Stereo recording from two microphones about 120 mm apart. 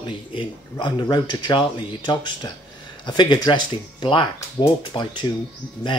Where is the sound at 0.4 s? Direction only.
40° left (ahead or behind).